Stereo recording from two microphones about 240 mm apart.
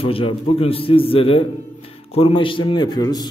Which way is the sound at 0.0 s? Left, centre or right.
Left.